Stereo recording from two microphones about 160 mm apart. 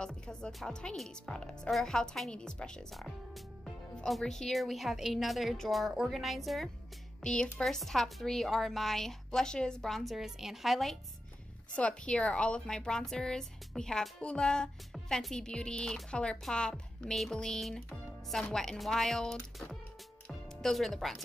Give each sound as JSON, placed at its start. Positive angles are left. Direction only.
{"t": 0.0, "sound": "a woman's voice", "side_deg": 5}
{"t": 20.2, "sound": "music", "side_deg": 0}